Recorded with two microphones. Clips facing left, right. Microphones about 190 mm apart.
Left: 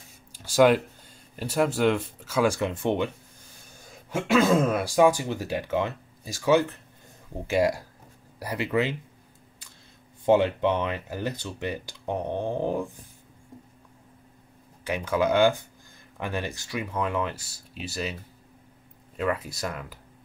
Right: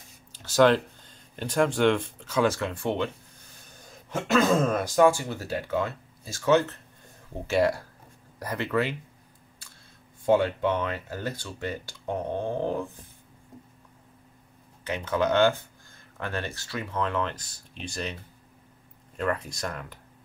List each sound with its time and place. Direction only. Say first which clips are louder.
0.3 s speech: left 1 dB; 10° left (ahead or behind)
4.1 s speech: left 2 dB; 10° left (ahead or behind)
10.2 s speech: left 2 dB; 20° left (ahead or behind)
14.9 s speech: left 1 dB; 10° left (ahead or behind)
19.1 s speech: left 1 dB; 5° left (ahead or behind)